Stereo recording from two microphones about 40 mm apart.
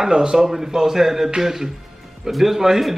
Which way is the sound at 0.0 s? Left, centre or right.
Centre.